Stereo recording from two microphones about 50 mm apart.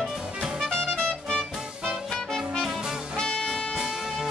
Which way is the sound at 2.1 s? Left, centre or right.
Centre.